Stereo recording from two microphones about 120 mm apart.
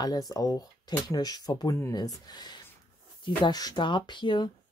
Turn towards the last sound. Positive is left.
turn(degrees=40)  # may be behind; listen again after turning